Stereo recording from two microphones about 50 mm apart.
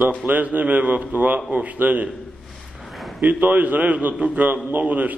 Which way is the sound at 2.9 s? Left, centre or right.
Centre.